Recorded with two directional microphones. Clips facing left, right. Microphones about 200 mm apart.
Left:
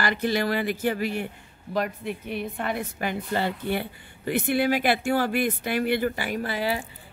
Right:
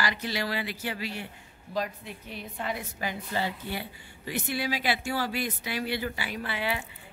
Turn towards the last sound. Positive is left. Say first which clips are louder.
# left 5 dB
turn(degrees=40)  # may be behind; listen again after turning